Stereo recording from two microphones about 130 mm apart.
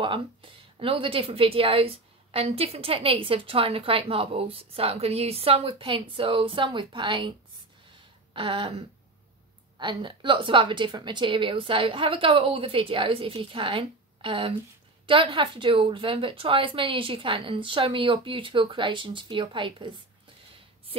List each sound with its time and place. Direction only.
0.0 s speech: 40° right (ahead or behind)
7.9 s a sound: 40° right (ahead or behind)
9.8 s a woman's voice: 40° right (ahead or behind)